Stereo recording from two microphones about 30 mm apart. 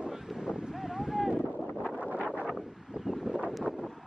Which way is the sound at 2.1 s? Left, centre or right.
Right.